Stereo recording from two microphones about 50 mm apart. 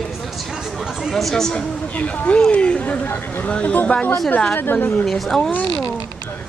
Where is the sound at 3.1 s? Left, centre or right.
Left.